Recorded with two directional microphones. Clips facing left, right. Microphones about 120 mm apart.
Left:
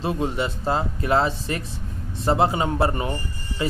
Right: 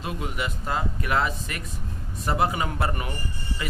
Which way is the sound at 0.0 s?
30° left (ahead or behind).